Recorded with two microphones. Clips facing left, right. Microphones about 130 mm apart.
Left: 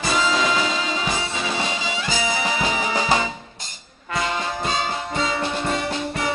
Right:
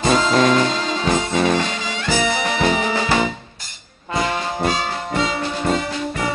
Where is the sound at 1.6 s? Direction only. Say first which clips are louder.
Right 1 dB; 15° left (ahead or behind).